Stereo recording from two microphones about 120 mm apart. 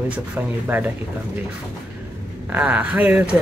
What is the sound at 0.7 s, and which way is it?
Speech, 15° right (ahead or behind).